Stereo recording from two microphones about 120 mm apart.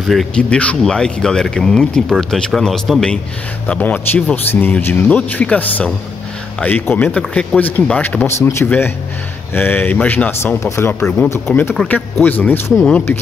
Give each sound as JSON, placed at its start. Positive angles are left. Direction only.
{"t": 0.0, "sound": "speech", "side_deg": 0}